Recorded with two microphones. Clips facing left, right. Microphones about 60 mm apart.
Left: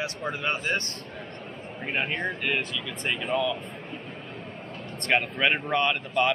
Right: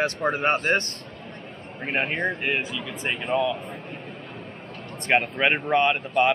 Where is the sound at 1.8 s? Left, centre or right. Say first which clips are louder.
Right 3 dB; right.